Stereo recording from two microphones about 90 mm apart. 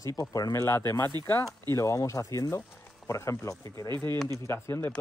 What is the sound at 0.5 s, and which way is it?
Speech, 30° left (ahead or behind).